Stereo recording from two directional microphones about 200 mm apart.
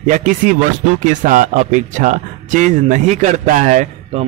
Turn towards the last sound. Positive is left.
turn(degrees=-40)  # may be behind; listen again after turning